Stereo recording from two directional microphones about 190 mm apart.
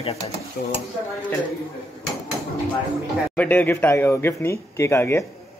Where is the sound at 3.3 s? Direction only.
10° left (ahead or behind).